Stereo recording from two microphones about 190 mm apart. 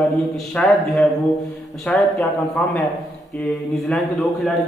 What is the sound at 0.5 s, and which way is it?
A man's voice, 5° left (ahead or behind).